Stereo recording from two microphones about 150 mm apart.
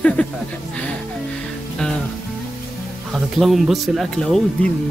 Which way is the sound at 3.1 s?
Centre (ahead or behind).